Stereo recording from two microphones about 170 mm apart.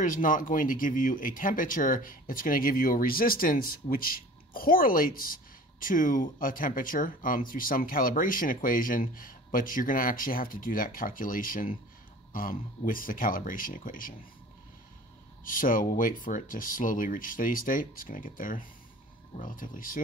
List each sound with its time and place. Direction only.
0.0 s speech: 50° left (ahead or behind)
15.4 s speech: 55° left (ahead or behind)